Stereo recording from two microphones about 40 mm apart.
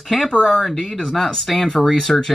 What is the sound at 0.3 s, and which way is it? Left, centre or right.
Speech, left.